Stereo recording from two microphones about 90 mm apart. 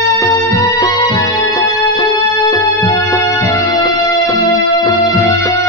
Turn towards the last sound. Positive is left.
turn(degrees=35)  # may be behind; listen again after turning